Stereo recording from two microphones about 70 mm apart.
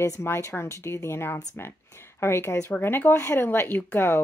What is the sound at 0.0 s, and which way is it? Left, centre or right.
Speech, left.